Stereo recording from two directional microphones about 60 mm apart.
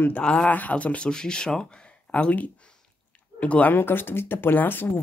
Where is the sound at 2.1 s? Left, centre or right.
Left.